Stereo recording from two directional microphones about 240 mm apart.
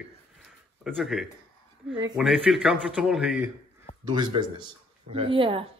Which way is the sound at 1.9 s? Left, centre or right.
Centre.